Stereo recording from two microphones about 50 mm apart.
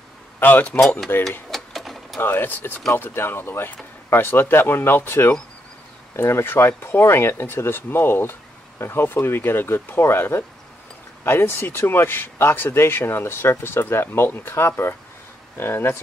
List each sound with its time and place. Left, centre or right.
0.4 s speech: left
1.5 s sewing machine: centre
2.2 s speech: left